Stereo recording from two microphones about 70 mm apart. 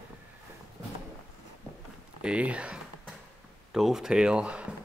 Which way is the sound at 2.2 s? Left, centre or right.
Centre.